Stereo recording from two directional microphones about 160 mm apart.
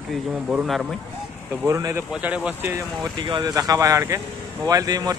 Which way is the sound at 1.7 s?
20° right (ahead or behind).